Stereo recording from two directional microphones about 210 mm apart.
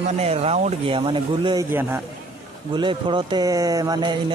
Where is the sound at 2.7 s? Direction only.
20° right (ahead or behind).